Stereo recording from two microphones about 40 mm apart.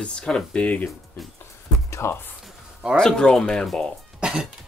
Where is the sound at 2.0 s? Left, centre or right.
Left.